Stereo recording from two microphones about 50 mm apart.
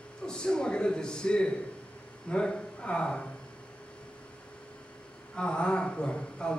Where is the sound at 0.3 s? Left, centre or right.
Centre.